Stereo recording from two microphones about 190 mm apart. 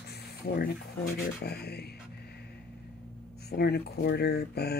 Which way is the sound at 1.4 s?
55° left (ahead or behind).